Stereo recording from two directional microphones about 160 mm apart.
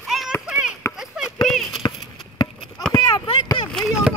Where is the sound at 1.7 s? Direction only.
30° left (ahead or behind).